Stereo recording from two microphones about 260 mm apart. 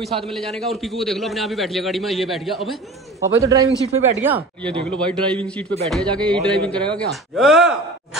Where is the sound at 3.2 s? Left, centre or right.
Centre.